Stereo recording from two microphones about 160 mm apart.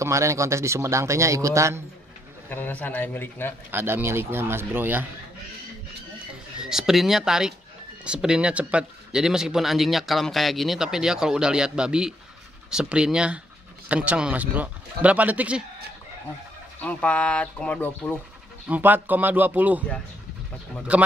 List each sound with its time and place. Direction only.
0.0 s a man's voice: 20° right (ahead or behind)
2.5 s speech: 10° left (ahead or behind)
3.7 s a man's voice: 15° right (ahead or behind)
6.6 s a man's voice: 5° right (ahead or behind)
16.8 s speech: 10° left (ahead or behind)
18.7 s a man's voice: 10° right (ahead or behind)
20.9 s a man's voice: 5° right (ahead or behind)